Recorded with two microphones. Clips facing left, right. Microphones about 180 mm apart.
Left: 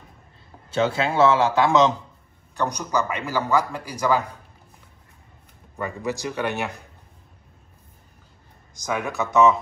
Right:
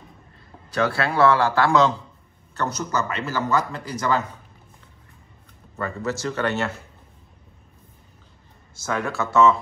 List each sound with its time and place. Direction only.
0.7 s a man's voice: 20° left (ahead or behind)
5.8 s a man's voice: 15° left (ahead or behind)
8.7 s a man's voice: 15° left (ahead or behind)